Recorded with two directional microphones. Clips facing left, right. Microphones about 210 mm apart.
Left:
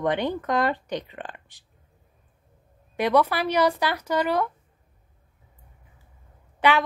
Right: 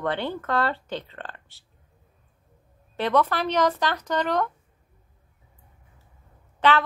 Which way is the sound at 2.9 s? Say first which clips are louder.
Left 2 dB; 10° left (ahead or behind).